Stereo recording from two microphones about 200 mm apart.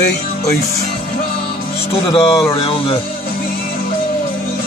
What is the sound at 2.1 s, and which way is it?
Speech, 25° left (ahead or behind).